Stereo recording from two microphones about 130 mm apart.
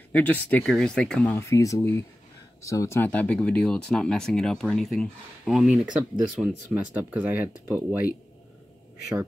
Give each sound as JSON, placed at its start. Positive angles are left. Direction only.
{"t": 0.1, "sound": "speech", "side_deg": 15}
{"t": 1.3, "sound": "speech", "side_deg": 25}
{"t": 3.1, "sound": "speech", "side_deg": 10}
{"t": 6.7, "sound": "speech", "side_deg": -10}